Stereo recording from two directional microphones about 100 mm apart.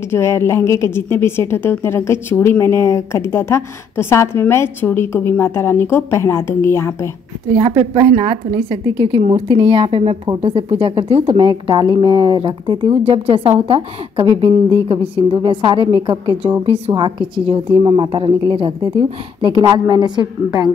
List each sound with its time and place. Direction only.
0.1 s a woman's voice: 25° left (ahead or behind)
7.5 s a woman's voice: 70° right (ahead or behind)
11.3 s a woman's voice: 50° right (ahead or behind)
19.6 s a woman's voice: 45° right (ahead or behind)